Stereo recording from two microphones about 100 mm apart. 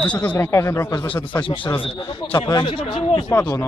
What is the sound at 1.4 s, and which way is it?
Speech, 55° left (ahead or behind).